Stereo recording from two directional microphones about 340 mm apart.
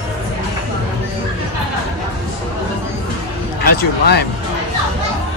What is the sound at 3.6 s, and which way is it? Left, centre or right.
Speech, left.